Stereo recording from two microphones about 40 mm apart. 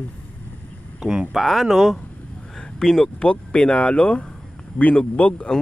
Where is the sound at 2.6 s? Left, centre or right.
Centre.